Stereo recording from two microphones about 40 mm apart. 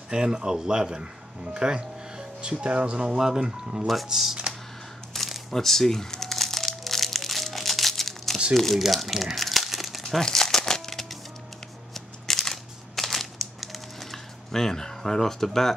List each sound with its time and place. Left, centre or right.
0.1 s speech: right
3.8 s speech: centre
5.1 s music: centre
8.5 s speech: centre
8.8 s crumpling: centre
10.2 s crumpling: centre
11.9 s crushing: centre